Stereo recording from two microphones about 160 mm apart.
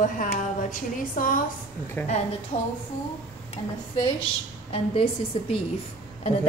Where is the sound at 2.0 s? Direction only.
10° left (ahead or behind).